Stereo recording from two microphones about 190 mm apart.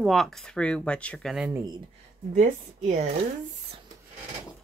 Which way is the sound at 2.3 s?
40° right (ahead or behind).